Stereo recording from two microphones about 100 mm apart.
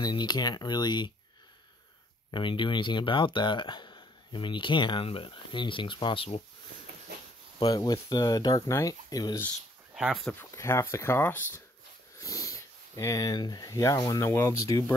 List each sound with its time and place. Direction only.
0.0 s speech: 45° left (ahead or behind)
2.3 s speech: 55° left (ahead or behind)
7.5 s speech: 40° left (ahead or behind)
10.4 s speech: 25° left (ahead or behind)
12.2 s speech: 35° left (ahead or behind)